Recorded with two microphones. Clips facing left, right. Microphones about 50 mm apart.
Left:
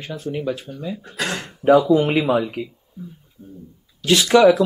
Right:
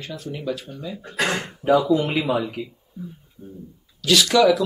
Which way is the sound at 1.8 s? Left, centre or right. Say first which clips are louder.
Left 4 dB; left.